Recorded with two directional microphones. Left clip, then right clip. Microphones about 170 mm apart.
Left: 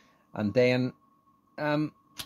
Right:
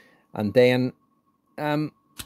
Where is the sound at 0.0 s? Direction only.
55° right (ahead or behind).